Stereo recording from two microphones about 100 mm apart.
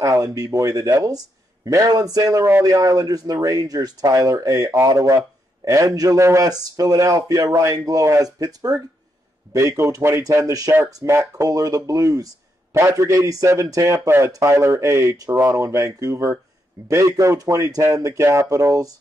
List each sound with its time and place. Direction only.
0.0 s a man's voice: 35° right (ahead or behind)